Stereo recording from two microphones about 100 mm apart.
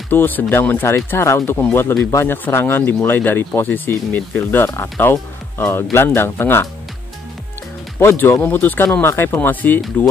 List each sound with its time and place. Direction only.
0.1 s speech: 20° left (ahead or behind)
8.0 s speech: 25° left (ahead or behind)